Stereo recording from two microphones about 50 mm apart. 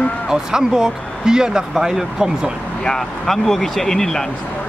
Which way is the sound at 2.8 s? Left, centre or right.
Centre.